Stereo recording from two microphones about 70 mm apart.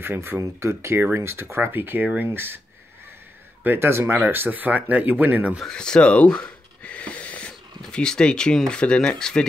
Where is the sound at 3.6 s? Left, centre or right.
Right.